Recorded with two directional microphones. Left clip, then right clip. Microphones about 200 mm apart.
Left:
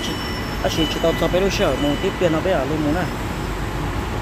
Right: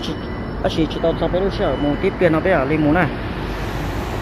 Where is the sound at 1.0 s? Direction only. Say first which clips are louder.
Left 1 dB; 15° left (ahead or behind).